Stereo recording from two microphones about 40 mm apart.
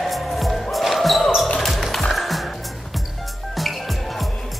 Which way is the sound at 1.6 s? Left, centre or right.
Centre.